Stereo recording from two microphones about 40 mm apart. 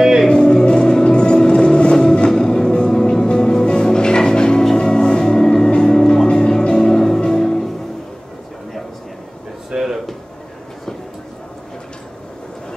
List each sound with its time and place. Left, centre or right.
0.0 s music: centre
0.3 s music: centre
9.7 s a sound: centre